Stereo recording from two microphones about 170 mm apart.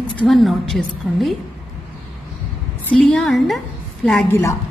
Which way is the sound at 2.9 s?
Centre (ahead or behind).